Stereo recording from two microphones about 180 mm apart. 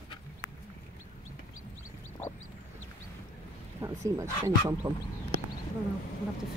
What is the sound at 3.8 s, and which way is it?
Speech, 15° right (ahead or behind).